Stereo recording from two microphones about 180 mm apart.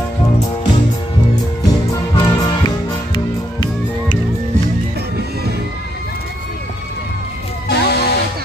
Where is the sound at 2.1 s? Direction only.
25° left (ahead or behind).